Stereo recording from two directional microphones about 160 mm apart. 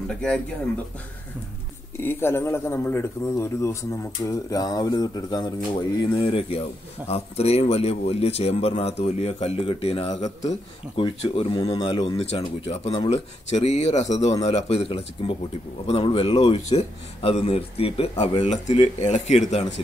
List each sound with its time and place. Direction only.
0.1 s speech: 5° left (ahead or behind)
2.0 s a man's voice: 15° left (ahead or behind)
6.1 s speech: 35° left (ahead or behind)
11.0 s speech: 35° left (ahead or behind)
12.2 s speech: 40° left (ahead or behind)